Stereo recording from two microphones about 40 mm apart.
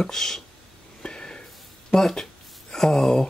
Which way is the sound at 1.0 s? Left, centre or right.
Left.